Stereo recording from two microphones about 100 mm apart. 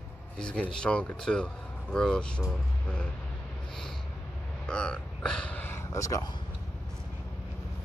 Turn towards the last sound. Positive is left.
turn(degrees=35)  # may be behind; listen again after turning